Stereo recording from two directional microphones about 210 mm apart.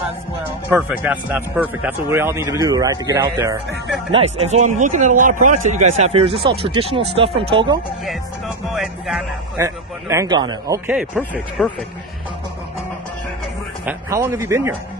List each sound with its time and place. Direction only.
0.7 s a man's voice: 5° right (ahead or behind)
4.1 s a man's voice: 30° right (ahead or behind)
8.7 s speech: centre (ahead or behind)
9.6 s a man's voice: 15° right (ahead or behind)
10.9 s speech: 5° right (ahead or behind)
13.8 s a man's voice: 10° right (ahead or behind)